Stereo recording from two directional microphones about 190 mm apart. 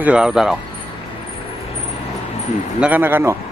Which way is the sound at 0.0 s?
5° right (ahead or behind).